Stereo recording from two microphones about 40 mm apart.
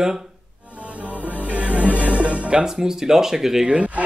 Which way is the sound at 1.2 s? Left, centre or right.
Right.